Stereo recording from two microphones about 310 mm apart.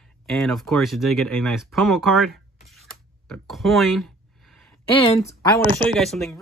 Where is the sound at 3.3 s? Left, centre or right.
Centre.